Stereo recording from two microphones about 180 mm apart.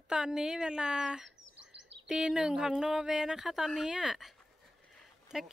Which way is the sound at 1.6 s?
85° right.